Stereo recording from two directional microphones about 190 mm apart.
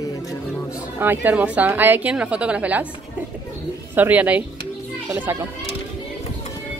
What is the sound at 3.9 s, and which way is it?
A woman's voice, 10° right (ahead or behind).